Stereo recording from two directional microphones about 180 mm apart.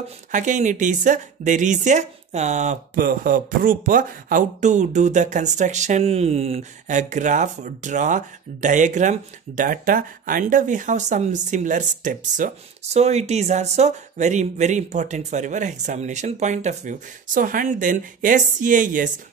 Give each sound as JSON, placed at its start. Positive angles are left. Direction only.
{"t": 0.3, "sound": "speech", "side_deg": -45}